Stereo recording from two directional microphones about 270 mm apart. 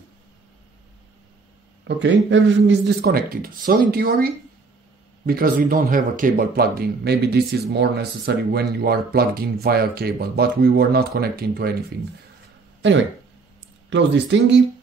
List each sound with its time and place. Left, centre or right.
1.9 s speech: right
13.8 s speech: right